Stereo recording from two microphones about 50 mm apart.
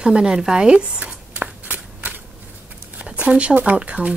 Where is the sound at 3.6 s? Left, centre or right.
Right.